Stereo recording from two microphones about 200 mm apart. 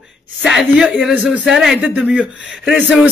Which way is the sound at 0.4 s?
Centre (ahead or behind).